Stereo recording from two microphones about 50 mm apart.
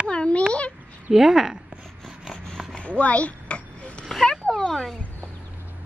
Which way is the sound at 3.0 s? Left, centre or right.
Left.